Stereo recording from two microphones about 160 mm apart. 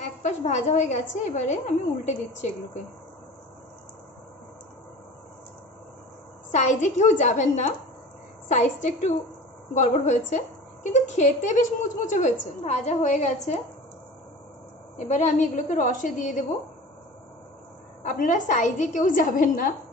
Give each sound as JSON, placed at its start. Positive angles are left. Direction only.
{"t": 0.2, "sound": "a woman's voice", "side_deg": 45}
{"t": 6.5, "sound": "a woman's voice", "side_deg": 45}
{"t": 15.0, "sound": "a woman's voice", "side_deg": 50}
{"t": 18.0, "sound": "a woman's voice", "side_deg": 55}